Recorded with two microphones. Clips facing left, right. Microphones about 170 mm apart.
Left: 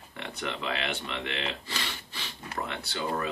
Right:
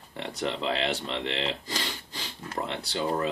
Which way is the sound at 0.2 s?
35° right (ahead or behind).